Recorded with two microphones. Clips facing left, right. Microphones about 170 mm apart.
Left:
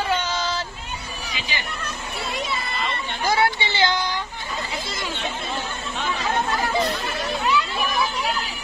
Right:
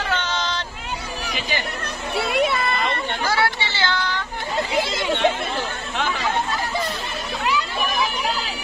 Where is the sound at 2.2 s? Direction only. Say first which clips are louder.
Right 9 dB; 65° right (ahead or behind).